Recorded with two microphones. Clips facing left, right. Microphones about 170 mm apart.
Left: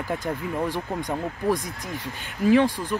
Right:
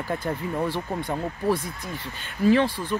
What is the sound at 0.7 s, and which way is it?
Speech, 15° left (ahead or behind).